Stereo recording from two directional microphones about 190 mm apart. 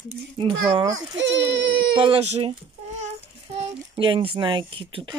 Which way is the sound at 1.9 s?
30° right (ahead or behind).